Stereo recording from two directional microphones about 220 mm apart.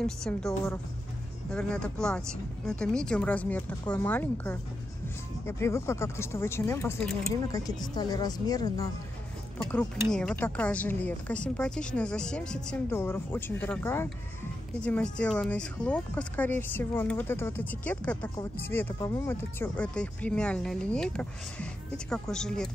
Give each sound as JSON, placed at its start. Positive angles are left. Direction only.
{"t": 0.0, "sound": "a woman's voice", "side_deg": 5}
{"t": 7.5, "sound": "a woman's voice", "side_deg": 15}
{"t": 10.1, "sound": "a woman's voice", "side_deg": 5}